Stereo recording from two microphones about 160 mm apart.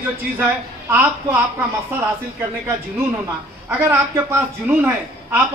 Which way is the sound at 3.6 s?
15° right (ahead or behind).